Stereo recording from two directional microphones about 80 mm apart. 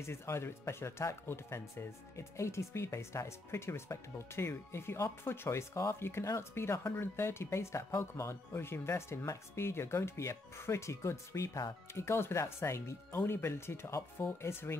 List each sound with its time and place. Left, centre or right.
0.0 s speech: left